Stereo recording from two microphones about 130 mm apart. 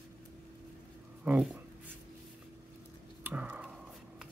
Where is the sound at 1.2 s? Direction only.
5° right (ahead or behind).